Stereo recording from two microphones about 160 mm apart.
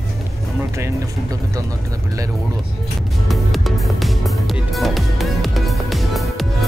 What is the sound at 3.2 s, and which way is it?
Music, centre (ahead or behind).